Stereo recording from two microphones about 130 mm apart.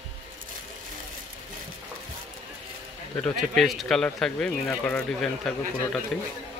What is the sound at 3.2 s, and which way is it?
Speech, centre (ahead or behind).